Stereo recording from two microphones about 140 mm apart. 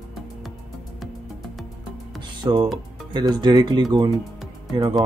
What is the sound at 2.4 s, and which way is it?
Speech, 25° right (ahead or behind).